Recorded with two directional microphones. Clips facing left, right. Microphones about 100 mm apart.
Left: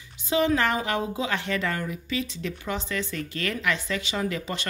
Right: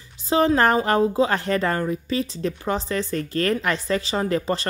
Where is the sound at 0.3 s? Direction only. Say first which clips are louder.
Right 5 dB; 35° right (ahead or behind).